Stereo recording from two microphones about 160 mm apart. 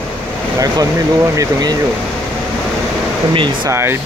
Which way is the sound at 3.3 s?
30° right (ahead or behind).